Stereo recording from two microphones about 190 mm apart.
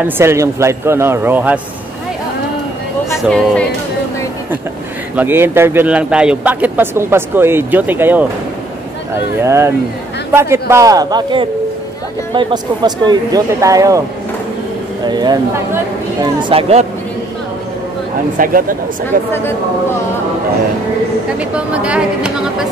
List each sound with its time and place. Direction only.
0.0 s speech: 15° right (ahead or behind)
3.3 s speech: 5° left (ahead or behind)
5.1 s speech: 10° right (ahead or behind)
9.4 s speech: 15° right (ahead or behind)
15.0 s speech: 20° right (ahead or behind)
16.3 s speech: 30° right (ahead or behind)
18.4 s speech: 45° right (ahead or behind)
21.4 s speech: 5° right (ahead or behind)